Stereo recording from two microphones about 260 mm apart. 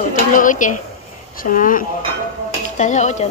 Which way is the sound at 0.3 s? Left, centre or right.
Left.